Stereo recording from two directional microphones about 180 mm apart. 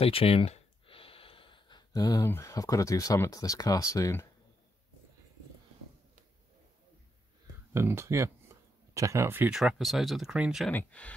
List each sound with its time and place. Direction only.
0.0 s speech: 30° left (ahead or behind); by 4.3 s 15° left (ahead or behind)
7.7 s speech: 15° right (ahead or behind)
8.5 s a sound: 15° right (ahead or behind)
8.9 s speech: 15° right (ahead or behind)
10.7 s speech: 10° left (ahead or behind)